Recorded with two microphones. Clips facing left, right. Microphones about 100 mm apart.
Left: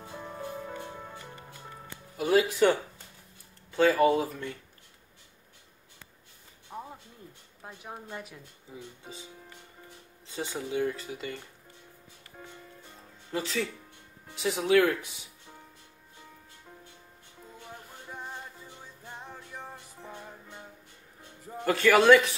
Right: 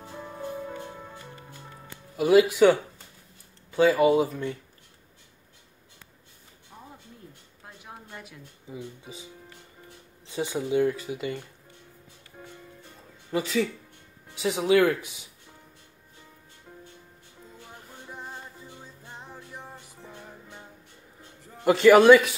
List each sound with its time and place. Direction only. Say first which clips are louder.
0.1 s music: right 3 dB; centre (ahead or behind)
2.1 s speech: right 6 dB; 5° right (ahead or behind)
6.7 s a sound: left 8 dB; 25° left (ahead or behind)
10.3 s speech: right 6 dB; 10° right (ahead or behind)
13.3 s speech: right 5 dB; 5° right (ahead or behind)
18.2 s music: even; 5° right (ahead or behind)
19.6 s music: left 1 dB; 10° left (ahead or behind)
21.6 s speech: right 6 dB; 20° right (ahead or behind)